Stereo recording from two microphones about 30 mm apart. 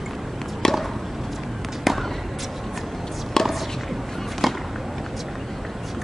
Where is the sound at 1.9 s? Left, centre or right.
Centre.